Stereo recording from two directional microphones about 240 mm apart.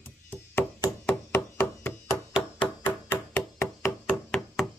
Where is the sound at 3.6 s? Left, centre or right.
Centre.